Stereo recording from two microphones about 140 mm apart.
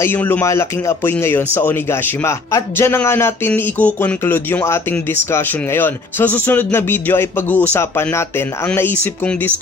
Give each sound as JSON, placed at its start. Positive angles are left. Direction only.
{"t": 0.0, "sound": "speech", "side_deg": 15}